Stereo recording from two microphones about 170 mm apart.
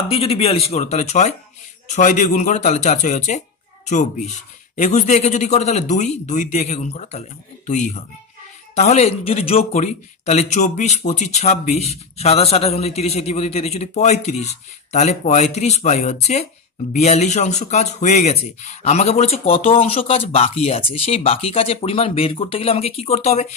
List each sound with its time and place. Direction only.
0.1 s speech: 35° left (ahead or behind)